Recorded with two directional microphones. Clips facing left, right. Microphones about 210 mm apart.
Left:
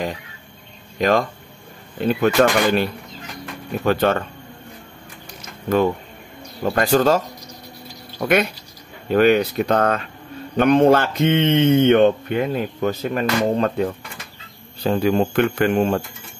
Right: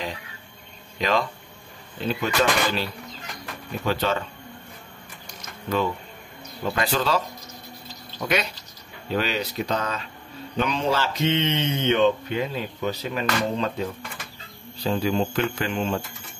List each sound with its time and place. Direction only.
0.9 s speech: 50° left (ahead or behind)
6.6 s speech: 45° left (ahead or behind)